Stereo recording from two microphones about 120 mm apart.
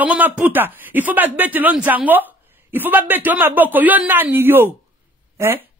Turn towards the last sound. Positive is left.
turn(degrees=-20)  # may be behind; listen again after turning